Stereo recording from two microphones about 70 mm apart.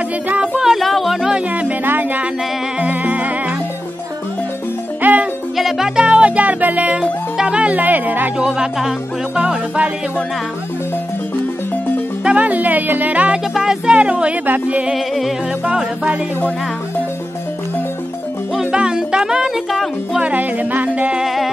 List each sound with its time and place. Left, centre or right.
0.6 s music: centre
1.5 s music: right
5.0 s music: right
5.6 s music: centre
6.0 s music: centre
8.4 s music: centre
12.3 s music: right
13.6 s music: centre; by 14.9 s right
14.9 s music: centre
15.6 s music: centre
16.3 s music: left
18.5 s music: centre
20.2 s music: right
21.2 s music: centre